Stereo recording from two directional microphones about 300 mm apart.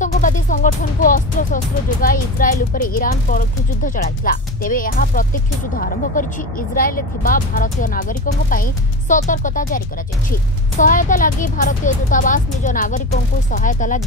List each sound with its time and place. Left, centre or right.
0.0 s speech: left
9.1 s speech: left